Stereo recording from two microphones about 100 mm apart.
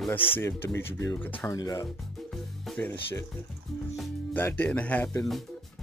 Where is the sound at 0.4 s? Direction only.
25° left (ahead or behind).